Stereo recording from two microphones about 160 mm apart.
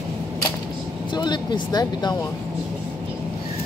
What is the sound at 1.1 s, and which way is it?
Speech, 30° left (ahead or behind).